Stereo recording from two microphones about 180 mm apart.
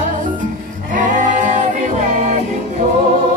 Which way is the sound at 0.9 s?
45° right (ahead or behind).